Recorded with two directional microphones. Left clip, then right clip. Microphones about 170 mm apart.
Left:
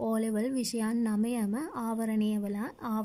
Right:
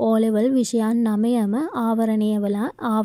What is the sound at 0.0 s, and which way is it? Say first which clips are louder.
A woman's voice: right 12 dB; 25° right (ahead or behind).